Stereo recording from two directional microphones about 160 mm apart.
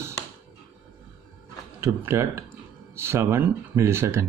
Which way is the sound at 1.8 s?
15° right (ahead or behind).